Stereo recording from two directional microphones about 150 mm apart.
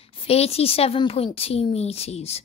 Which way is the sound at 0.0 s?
40° left (ahead or behind).